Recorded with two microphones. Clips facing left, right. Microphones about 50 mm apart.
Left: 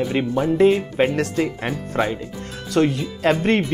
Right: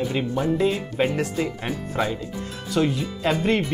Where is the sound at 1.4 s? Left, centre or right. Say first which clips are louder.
Left 3 dB; left.